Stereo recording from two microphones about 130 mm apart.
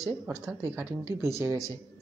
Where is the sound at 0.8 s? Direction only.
20° right (ahead or behind).